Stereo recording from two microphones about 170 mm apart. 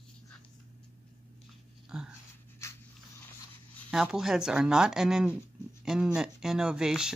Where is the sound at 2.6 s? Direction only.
15° left (ahead or behind).